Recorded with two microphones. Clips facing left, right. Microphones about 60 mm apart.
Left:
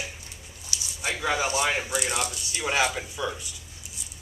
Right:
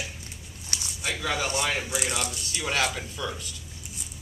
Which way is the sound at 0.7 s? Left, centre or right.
Right.